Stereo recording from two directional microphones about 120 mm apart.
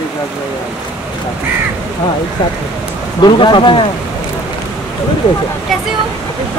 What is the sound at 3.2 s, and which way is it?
Speech, 40° left (ahead or behind).